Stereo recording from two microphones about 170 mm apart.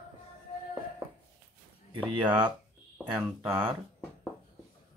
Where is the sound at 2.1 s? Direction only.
25° right (ahead or behind).